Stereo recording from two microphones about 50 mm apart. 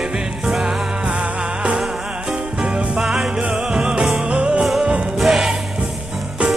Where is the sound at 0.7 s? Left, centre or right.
Centre.